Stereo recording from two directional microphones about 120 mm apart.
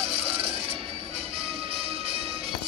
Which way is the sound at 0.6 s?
55° right (ahead or behind).